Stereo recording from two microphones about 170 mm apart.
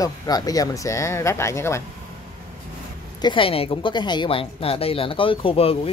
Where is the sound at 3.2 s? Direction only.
30° left (ahead or behind).